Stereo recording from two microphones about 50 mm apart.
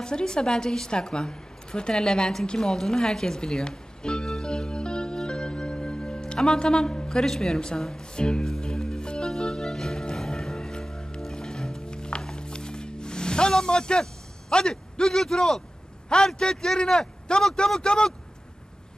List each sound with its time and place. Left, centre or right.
0.0 s a sound: centre
11.1 s music: centre
14.5 s speech: centre